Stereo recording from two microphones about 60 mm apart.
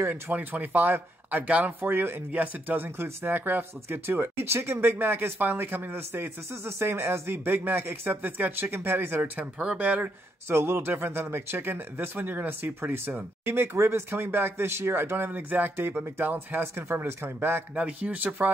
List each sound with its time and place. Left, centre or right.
0.1 s speech: right
9.6 s speech: centre
10.5 s speech: right
15.3 s speech: right
17.7 s speech: right